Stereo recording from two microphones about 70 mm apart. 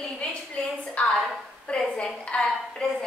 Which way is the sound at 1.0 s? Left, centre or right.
Centre.